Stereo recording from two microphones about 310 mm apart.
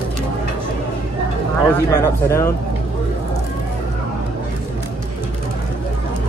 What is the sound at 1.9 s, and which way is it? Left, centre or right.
Speech, centre.